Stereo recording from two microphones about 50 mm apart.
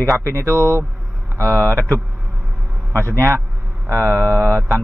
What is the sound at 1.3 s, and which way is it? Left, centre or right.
A man's voice, right.